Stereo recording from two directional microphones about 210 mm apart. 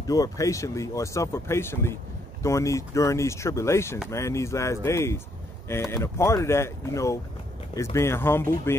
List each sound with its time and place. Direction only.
0.0 s speech: 15° left (ahead or behind)